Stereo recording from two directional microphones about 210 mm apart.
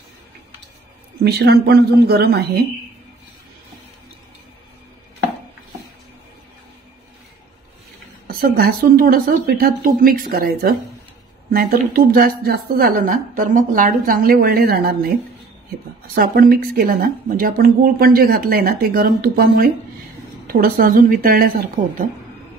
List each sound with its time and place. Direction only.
1.2 s speech: 50° right (ahead or behind)
8.3 s speech: 45° right (ahead or behind)
16.2 s speech: 45° right (ahead or behind)